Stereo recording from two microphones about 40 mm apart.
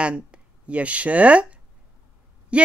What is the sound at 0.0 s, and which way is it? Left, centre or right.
A woman's voice, right.